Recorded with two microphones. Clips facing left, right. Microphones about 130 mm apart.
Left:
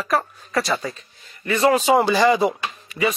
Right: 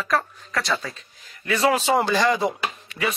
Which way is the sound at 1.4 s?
Centre (ahead or behind).